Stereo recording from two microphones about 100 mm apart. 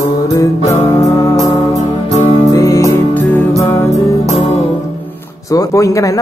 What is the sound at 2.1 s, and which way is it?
Music, 35° left (ahead or behind).